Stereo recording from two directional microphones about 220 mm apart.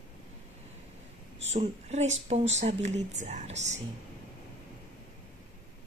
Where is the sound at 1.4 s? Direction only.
30° right (ahead or behind).